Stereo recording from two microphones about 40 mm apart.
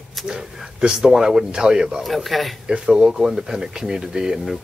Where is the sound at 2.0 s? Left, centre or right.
Centre.